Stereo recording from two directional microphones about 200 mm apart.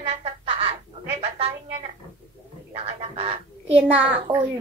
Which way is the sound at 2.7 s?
30° right (ahead or behind).